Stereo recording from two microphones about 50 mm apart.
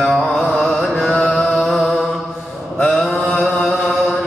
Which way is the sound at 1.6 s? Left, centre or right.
Centre.